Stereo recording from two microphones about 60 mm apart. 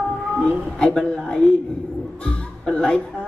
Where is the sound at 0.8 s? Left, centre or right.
Centre.